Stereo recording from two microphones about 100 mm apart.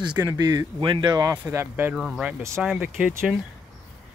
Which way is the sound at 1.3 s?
25° right (ahead or behind).